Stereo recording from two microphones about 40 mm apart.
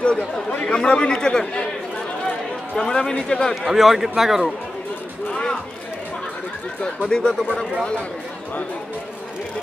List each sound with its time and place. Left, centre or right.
0.0 s speech: left
2.8 s a man's voice: centre
3.6 s a man's voice: centre
5.3 s a sound: centre
6.8 s speech: centre